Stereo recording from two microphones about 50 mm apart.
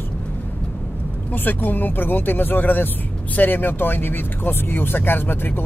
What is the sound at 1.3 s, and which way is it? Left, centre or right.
Speech, left.